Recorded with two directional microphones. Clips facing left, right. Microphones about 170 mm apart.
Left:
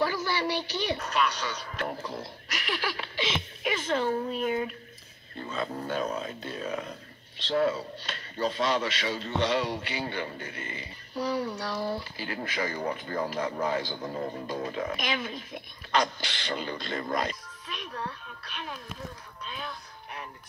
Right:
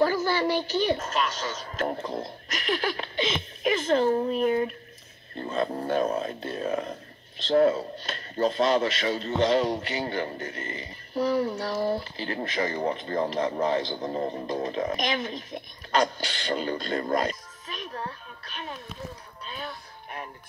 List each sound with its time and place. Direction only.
0.0 s a woman's voice: 45° right (ahead or behind)
5.4 s a sound: 50° right (ahead or behind)
5.9 s speech: 45° right (ahead or behind)
12.0 s speech: 30° right (ahead or behind)
14.8 s speech: 40° right (ahead or behind)